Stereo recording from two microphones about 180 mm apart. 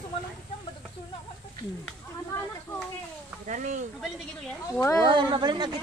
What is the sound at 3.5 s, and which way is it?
Speech, 45° right (ahead or behind).